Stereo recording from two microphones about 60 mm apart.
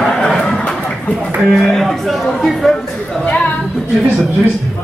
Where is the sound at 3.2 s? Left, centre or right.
Left.